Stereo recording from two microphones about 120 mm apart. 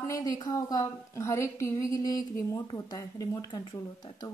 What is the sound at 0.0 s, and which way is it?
A woman's voice, 30° left (ahead or behind).